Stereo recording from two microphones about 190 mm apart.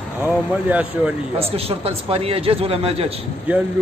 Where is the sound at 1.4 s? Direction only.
30° right (ahead or behind).